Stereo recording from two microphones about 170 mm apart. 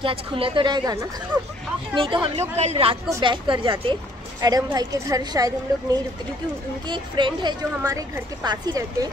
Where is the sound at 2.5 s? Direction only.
40° right (ahead or behind).